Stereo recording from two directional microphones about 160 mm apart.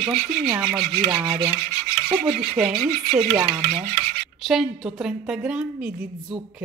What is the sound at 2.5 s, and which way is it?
Speech, 5° right (ahead or behind).